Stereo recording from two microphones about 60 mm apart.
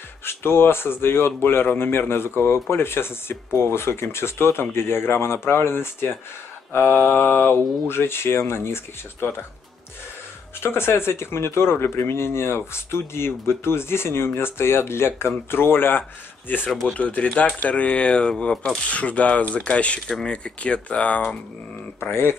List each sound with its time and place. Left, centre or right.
0.2 s speech: left
10.6 s speech: left; by 20.0 s centre
20.1 s speech: centre
20.4 s speech: centre